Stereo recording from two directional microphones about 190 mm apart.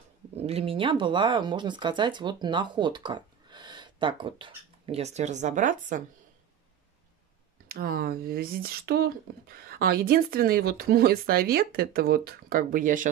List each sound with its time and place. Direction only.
0.4 s speech: 30° right (ahead or behind)
7.6 s speech: 50° right (ahead or behind)